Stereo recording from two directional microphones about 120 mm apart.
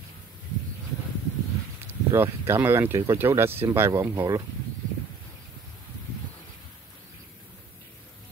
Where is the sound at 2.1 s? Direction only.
20° right (ahead or behind).